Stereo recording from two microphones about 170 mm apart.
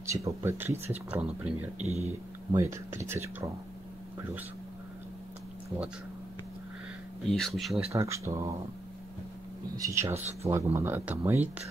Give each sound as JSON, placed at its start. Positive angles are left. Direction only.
{"t": 0.0, "sound": "speech", "side_deg": -15}
{"t": 1.8, "sound": "speech", "side_deg": -40}
{"t": 2.5, "sound": "speech", "side_deg": -15}
{"t": 7.2, "sound": "speech", "side_deg": 0}
{"t": 7.9, "sound": "speech", "side_deg": -15}
{"t": 9.8, "sound": "speech", "side_deg": -15}